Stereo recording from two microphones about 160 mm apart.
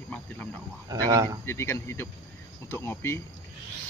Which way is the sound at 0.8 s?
20° right (ahead or behind).